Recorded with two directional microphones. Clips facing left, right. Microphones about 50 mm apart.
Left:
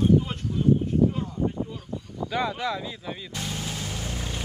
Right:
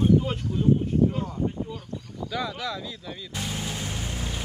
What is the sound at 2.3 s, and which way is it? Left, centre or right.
Speech, left.